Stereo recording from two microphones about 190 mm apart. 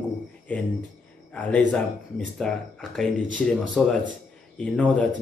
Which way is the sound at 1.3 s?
5° left (ahead or behind).